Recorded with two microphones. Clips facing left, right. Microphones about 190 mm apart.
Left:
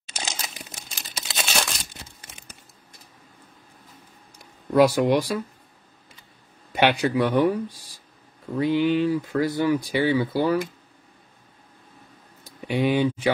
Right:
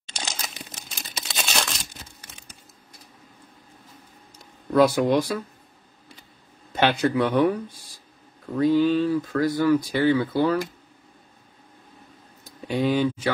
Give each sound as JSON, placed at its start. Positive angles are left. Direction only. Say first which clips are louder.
{"t": 0.3, "sound": "crumpling", "louder": "even", "side_deg": 5}
{"t": 4.4, "sound": "a sound", "louder": "left 1 dB", "side_deg": 10}
{"t": 6.7, "sound": "speech", "louder": "even", "side_deg": 15}
{"t": 8.5, "sound": "speech", "louder": "right 2 dB", "side_deg": 15}
{"t": 12.6, "sound": "speech", "louder": "left 1 dB", "side_deg": 15}